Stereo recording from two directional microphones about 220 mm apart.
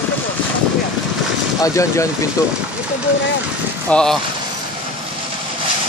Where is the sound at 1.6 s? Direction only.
15° left (ahead or behind).